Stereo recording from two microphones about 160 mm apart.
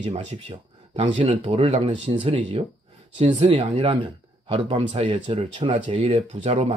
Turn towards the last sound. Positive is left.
turn(degrees=-40)  # may be behind; listen again after turning